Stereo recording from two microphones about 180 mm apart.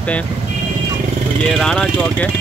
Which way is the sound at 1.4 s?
5° left (ahead or behind).